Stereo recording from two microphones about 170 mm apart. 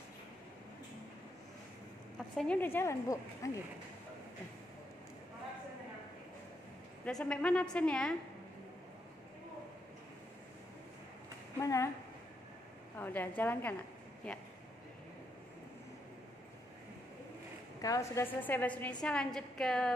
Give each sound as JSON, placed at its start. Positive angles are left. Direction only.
{"t": 2.1, "sound": "a woman's voice", "side_deg": 5}
{"t": 7.1, "sound": "a woman's voice", "side_deg": 5}
{"t": 11.6, "sound": "speech", "side_deg": 20}
{"t": 12.9, "sound": "a woman's voice", "side_deg": 10}
{"t": 17.8, "sound": "a woman's voice", "side_deg": 20}